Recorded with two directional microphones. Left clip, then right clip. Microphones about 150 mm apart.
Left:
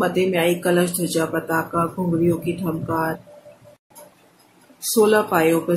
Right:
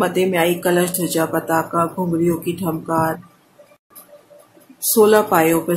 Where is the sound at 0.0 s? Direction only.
20° right (ahead or behind).